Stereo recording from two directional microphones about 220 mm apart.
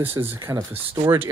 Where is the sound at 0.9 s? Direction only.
25° right (ahead or behind).